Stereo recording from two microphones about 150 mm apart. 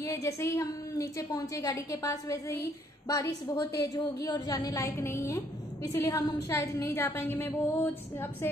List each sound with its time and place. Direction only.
0.0 s a woman's voice: 20° left (ahead or behind)